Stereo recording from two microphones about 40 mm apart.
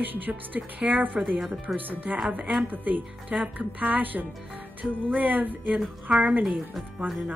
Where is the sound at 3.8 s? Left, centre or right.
Right.